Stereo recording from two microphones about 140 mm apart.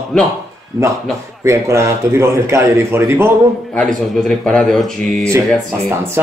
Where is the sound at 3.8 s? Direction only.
5° left (ahead or behind).